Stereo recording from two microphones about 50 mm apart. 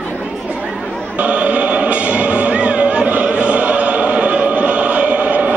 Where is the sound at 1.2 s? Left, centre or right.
Right.